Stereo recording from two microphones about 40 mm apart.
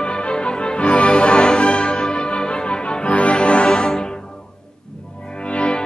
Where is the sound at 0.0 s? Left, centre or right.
Left.